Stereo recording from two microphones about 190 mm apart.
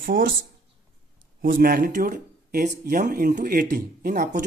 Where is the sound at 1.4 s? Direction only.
50° right (ahead or behind).